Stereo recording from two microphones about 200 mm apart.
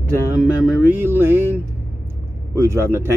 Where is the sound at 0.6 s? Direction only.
10° right (ahead or behind).